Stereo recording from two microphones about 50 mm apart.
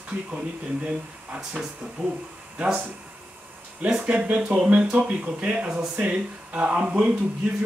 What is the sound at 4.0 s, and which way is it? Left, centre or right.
Speech, right.